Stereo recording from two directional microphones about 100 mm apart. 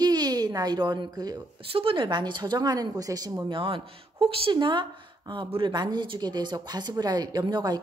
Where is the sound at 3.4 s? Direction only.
60° right (ahead or behind).